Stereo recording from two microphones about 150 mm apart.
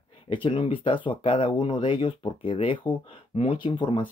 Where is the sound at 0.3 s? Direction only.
35° left (ahead or behind).